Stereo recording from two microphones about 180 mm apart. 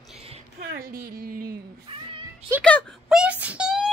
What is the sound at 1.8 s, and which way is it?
Cat, 30° right (ahead or behind).